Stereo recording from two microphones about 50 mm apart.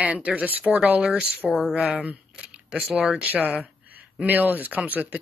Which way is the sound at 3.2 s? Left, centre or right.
Right.